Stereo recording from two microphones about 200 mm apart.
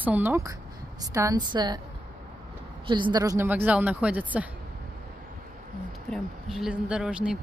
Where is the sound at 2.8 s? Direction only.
25° right (ahead or behind); by 4.5 s 5° right (ahead or behind).